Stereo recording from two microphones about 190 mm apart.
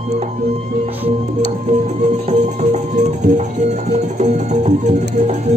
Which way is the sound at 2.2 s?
40° right (ahead or behind).